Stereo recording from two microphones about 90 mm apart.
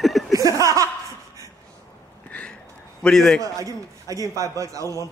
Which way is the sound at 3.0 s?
10° left (ahead or behind).